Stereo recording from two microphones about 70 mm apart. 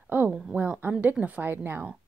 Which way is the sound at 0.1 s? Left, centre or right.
Right.